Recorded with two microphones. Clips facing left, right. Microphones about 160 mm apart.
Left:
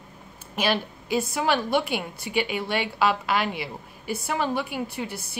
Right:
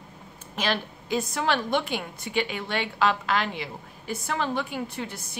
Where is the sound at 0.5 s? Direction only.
10° left (ahead or behind).